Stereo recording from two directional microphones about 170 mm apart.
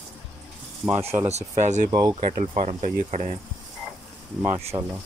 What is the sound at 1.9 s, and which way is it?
Speech, 25° right (ahead or behind).